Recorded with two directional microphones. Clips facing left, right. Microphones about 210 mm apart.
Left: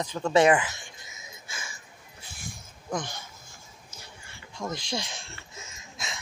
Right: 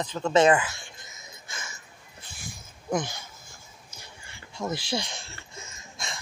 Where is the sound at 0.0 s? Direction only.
10° left (ahead or behind).